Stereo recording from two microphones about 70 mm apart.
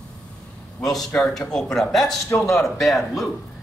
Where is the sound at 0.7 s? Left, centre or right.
Centre.